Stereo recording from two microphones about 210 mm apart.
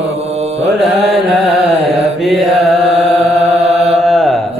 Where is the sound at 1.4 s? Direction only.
Centre (ahead or behind).